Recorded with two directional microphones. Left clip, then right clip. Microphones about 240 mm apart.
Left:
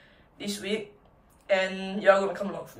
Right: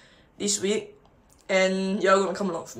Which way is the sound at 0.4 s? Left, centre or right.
Right.